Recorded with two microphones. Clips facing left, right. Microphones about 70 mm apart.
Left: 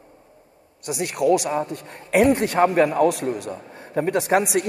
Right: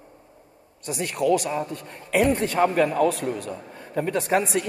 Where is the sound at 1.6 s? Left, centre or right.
Left.